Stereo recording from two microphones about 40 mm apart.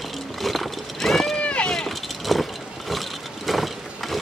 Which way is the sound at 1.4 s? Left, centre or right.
Left.